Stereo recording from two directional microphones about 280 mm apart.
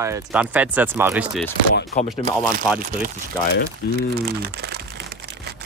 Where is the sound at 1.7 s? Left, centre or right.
Left.